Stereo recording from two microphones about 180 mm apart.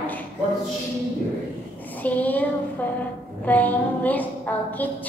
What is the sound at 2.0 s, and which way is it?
Speech, 10° left (ahead or behind).